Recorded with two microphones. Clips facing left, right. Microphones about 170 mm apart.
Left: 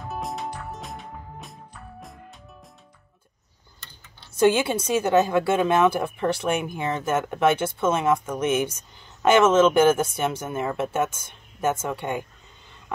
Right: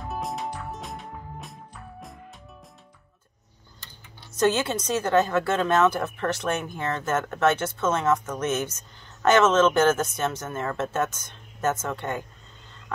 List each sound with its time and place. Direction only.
0.0 s music: centre (ahead or behind)
4.3 s speech: 10° left (ahead or behind)